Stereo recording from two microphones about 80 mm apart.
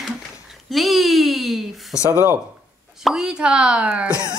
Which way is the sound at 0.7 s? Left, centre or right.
Centre.